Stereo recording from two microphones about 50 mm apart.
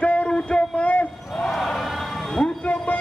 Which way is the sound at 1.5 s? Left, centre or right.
Centre.